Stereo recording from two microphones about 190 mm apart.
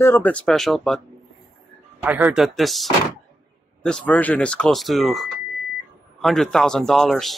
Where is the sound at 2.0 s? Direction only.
10° right (ahead or behind).